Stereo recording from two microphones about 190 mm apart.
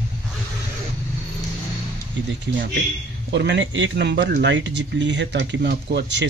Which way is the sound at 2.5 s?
70° right (ahead or behind).